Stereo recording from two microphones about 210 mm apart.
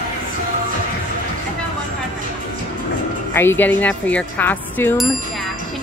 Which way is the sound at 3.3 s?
10° left (ahead or behind).